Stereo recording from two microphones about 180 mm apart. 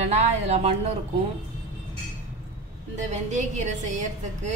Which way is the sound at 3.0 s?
40° right (ahead or behind).